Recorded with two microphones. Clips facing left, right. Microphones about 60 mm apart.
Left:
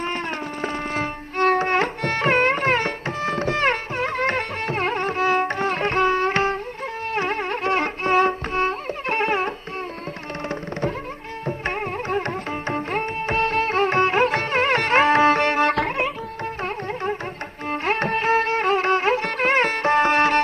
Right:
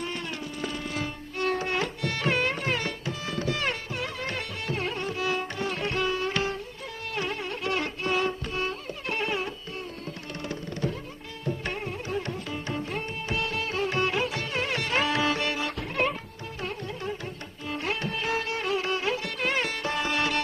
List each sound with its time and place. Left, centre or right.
0.0 s music: left
11.4 s music: left